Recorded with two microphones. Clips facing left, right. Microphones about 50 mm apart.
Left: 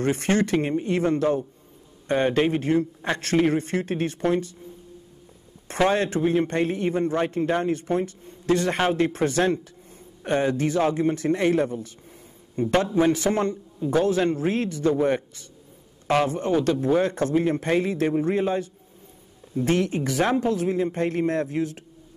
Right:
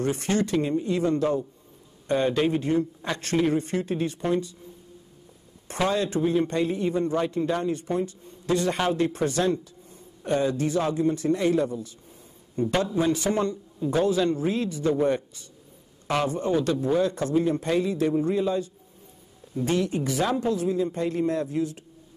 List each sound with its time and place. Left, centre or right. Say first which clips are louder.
0.0 s a man's voice: left 3 dB; left
3.2 s a man's voice: left 2 dB; left
5.9 s a man's voice: left 1 dB; left